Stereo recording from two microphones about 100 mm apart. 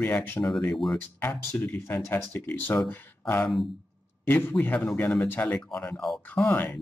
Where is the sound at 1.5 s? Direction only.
20° left (ahead or behind).